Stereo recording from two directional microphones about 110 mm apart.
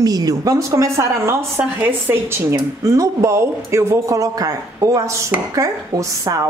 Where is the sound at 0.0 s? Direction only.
35° right (ahead or behind).